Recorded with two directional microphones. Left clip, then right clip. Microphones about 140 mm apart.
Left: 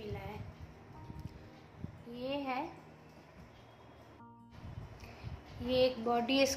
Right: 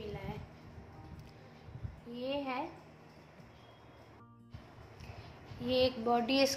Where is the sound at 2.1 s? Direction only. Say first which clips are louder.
Even; centre (ahead or behind).